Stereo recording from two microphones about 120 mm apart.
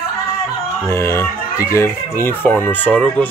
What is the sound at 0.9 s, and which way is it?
Speech, 20° left (ahead or behind).